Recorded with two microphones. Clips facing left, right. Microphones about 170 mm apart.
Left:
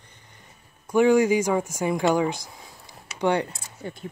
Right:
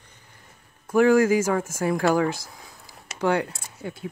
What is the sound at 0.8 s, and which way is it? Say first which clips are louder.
Speech: right 1 dB; 5° right (ahead or behind).